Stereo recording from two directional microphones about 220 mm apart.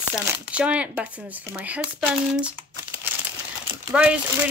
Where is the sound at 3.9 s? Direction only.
5° right (ahead or behind).